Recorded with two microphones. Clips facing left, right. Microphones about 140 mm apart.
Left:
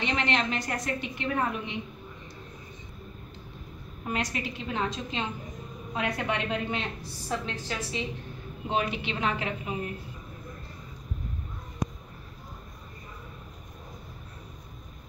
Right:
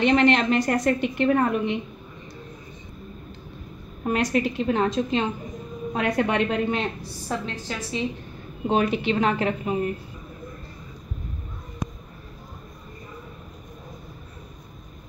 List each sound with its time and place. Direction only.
0.0 s a woman's voice: 55° right (ahead or behind)
4.0 s a woman's voice: 50° right (ahead or behind)
7.2 s a woman's voice: 40° right (ahead or behind)